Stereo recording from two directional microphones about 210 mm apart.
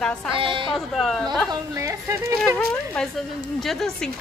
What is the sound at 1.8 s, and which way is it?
Speech, 15° right (ahead or behind).